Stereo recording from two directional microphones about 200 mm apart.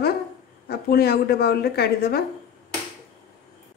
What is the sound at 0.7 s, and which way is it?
Speech, 50° left (ahead or behind).